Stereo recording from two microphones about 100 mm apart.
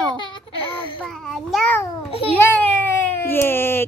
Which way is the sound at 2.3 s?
15° left (ahead or behind).